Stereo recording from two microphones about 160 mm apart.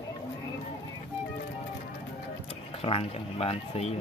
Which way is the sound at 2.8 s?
35° left (ahead or behind).